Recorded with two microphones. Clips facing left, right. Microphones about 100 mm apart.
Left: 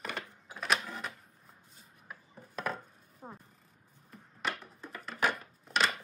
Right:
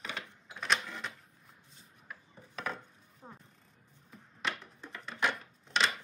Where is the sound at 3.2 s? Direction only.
25° left (ahead or behind).